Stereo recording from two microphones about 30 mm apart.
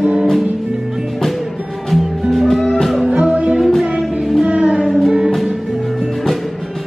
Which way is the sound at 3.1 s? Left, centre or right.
Right.